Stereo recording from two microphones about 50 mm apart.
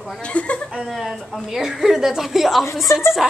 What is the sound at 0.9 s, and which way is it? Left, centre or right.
A woman's voice, centre.